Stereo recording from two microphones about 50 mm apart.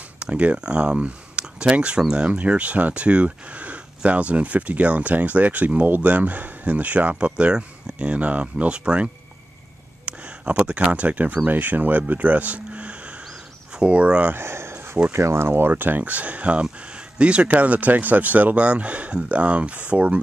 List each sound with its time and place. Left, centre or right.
0.2 s speech: right
12.1 s a sound: right
13.8 s speech: right
14.4 s a sound: right
15.1 s speech: right
16.0 s speech: right